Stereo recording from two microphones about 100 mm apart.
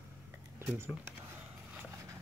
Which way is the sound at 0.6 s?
25° right (ahead or behind).